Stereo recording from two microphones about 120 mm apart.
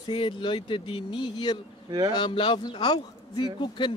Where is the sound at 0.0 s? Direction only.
40° left (ahead or behind).